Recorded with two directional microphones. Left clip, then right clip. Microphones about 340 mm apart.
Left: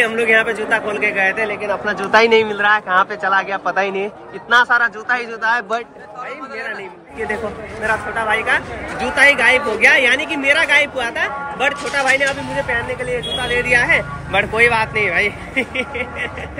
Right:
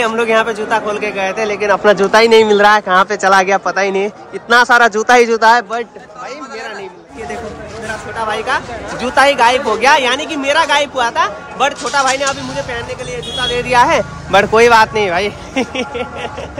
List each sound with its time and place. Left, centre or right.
0.0 s speech: centre
1.4 s speech: right
2.0 s speech: centre
8.3 s speech: centre
13.5 s speech: centre
13.8 s speech: right
14.5 s speech: centre